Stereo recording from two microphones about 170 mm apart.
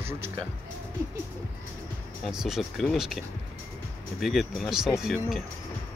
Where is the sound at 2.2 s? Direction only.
Centre (ahead or behind).